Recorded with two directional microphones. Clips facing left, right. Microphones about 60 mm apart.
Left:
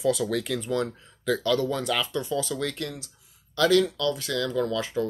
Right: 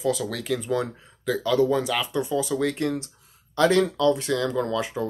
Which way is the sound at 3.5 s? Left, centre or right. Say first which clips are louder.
Right 1 dB; right.